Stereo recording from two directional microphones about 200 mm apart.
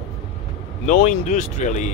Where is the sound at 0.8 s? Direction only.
35° left (ahead or behind).